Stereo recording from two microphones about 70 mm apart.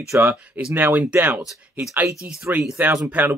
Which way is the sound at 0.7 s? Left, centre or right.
Right.